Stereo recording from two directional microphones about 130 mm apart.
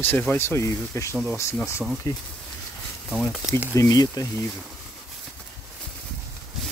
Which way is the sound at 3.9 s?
30° left (ahead or behind).